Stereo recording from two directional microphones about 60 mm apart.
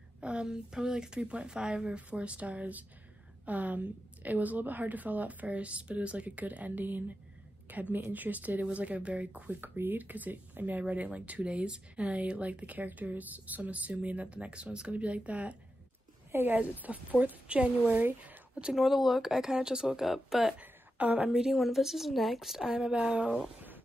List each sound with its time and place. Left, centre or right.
0.2 s speech: centre
9.6 s speech: right
16.3 s a sound: right
16.5 s speech: right
18.0 s a woman's voice: right
18.6 s a woman's voice: centre
20.5 s a sound: right
21.3 s a woman's voice: centre